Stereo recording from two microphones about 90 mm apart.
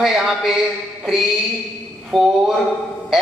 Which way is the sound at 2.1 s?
Centre (ahead or behind).